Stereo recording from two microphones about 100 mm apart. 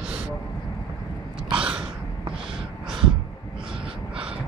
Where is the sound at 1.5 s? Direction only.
10° right (ahead or behind).